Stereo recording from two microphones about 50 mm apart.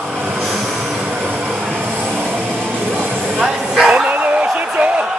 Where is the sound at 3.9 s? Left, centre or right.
Right.